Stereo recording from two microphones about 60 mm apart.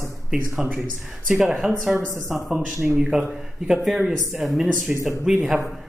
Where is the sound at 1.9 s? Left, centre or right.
Right.